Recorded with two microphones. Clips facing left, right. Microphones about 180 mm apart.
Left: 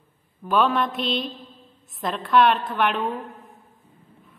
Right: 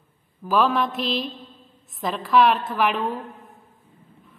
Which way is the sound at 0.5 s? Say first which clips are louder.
Even; centre (ahead or behind).